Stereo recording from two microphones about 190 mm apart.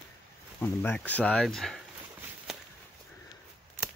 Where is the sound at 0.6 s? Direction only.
10° left (ahead or behind).